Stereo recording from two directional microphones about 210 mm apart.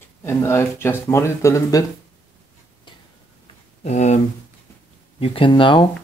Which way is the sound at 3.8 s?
35° left (ahead or behind).